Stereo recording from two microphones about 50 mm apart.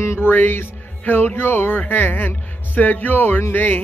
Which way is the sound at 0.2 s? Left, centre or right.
Left.